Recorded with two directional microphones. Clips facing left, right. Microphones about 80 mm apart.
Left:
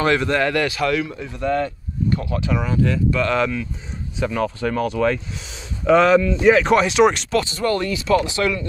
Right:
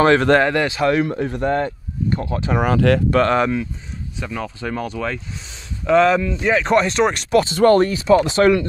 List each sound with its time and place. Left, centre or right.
0.4 s speech: right
1.0 s speech: right
2.6 s speech: right
3.1 s speech: right
3.3 s speech: right
4.2 s speech: centre
7.4 s speech: right